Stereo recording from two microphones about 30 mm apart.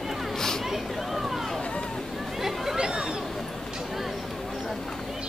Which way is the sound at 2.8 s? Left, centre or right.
Right.